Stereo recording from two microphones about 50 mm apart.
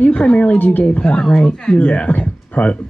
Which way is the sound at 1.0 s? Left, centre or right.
Centre.